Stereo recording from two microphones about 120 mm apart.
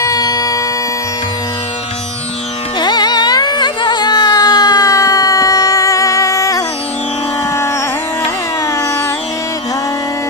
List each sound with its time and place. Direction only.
0.0 s music: 30° left (ahead or behind)
2.8 s music: 35° left (ahead or behind)
8.6 s carnatic music: 25° left (ahead or behind)